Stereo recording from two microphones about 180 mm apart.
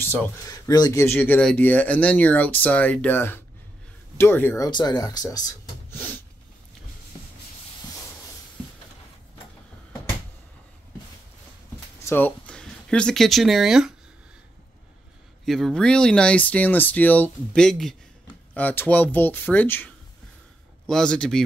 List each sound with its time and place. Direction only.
0.0 s speech: 15° left (ahead or behind)
4.6 s speech: 25° left (ahead or behind)
12.0 s speech: 10° left (ahead or behind)
15.4 s speech: centre (ahead or behind)